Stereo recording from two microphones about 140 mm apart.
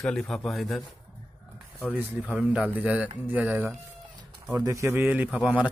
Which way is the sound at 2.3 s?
5° right (ahead or behind).